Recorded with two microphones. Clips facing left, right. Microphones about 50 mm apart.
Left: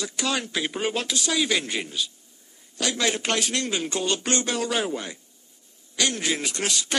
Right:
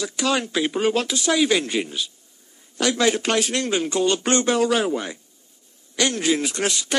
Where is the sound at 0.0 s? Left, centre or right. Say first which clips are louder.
Right 5 dB; right.